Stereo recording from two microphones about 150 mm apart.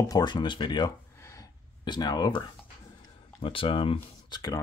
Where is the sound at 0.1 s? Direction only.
30° left (ahead or behind).